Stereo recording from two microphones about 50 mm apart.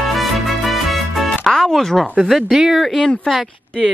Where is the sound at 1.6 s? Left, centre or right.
Centre.